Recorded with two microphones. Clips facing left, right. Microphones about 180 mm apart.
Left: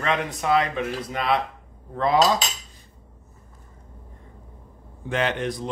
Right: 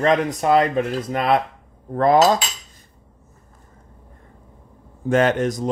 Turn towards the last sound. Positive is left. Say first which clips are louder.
# right 7 dB
turn(degrees=-45)  # may be behind; listen again after turning